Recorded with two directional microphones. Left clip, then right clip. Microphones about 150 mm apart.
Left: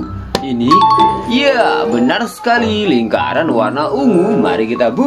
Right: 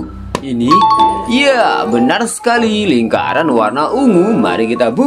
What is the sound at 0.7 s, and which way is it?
Speech, centre (ahead or behind).